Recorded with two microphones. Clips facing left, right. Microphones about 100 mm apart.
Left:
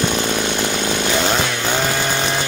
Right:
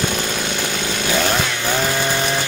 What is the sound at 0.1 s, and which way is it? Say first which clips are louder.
Chainsaw: left 3 dB; 20° left (ahead or behind).